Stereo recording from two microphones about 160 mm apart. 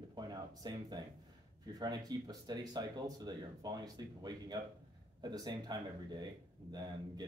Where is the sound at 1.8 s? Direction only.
25° right (ahead or behind).